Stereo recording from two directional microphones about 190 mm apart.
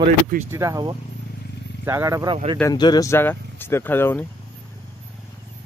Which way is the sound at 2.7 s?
20° left (ahead or behind).